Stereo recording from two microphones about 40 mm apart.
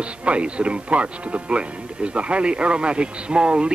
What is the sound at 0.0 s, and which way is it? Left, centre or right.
Speech, right.